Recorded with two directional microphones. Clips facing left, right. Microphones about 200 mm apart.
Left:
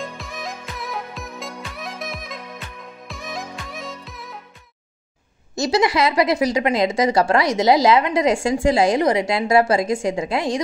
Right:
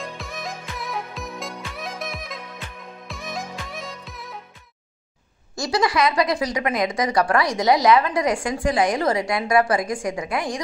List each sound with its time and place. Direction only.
0.0 s music: centre (ahead or behind)
5.6 s speech: 25° left (ahead or behind)